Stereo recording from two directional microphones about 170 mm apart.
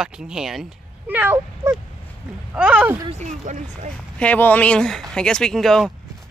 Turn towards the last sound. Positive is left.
turn(degrees=0)  # may be behind; listen again after turning